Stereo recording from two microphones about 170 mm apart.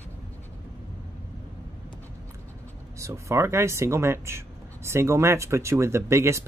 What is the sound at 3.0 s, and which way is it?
Speech, 15° right (ahead or behind).